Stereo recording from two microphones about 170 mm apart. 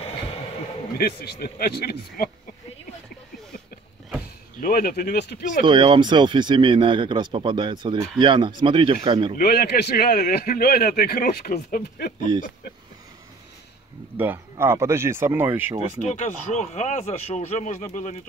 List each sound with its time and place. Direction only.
0.9 s a man's voice: 65° left (ahead or behind)
4.6 s a man's voice: 55° left (ahead or behind)
5.7 s speech: 30° right (ahead or behind)
9.4 s a man's voice: 65° left (ahead or behind)
14.1 s speech: 10° right (ahead or behind)
16.1 s speech: 45° left (ahead or behind)